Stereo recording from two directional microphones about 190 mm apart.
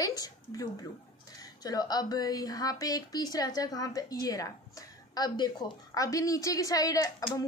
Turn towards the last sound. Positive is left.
turn(degrees=20)  # may be behind; listen again after turning